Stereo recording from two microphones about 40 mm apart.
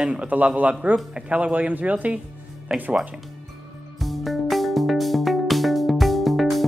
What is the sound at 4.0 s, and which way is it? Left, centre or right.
Music, centre.